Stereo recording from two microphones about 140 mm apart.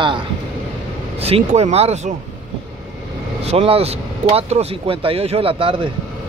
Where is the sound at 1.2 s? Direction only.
45° right (ahead or behind).